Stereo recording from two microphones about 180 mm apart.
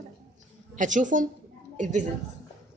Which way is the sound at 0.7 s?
45° right (ahead or behind).